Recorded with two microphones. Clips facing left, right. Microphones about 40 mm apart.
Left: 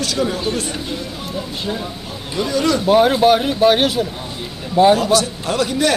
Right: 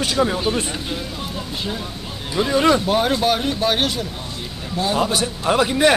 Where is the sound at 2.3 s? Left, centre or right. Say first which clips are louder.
Right 2 dB; right.